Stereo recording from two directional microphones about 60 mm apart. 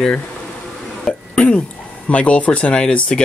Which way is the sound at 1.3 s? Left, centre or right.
Left.